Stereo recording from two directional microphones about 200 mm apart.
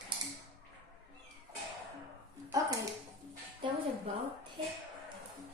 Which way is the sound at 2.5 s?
15° right (ahead or behind).